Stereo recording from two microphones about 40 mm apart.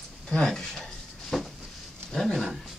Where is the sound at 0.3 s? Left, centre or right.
Centre.